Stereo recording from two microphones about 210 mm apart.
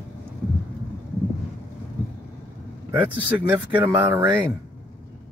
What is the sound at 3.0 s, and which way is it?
Speech, 10° right (ahead or behind).